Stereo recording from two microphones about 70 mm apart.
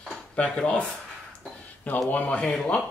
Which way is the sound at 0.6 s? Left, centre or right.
Centre.